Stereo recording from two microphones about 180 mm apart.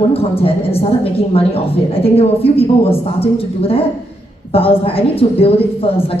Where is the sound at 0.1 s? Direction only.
30° left (ahead or behind).